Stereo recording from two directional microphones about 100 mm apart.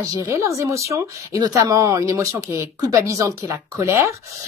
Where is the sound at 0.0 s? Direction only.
35° right (ahead or behind).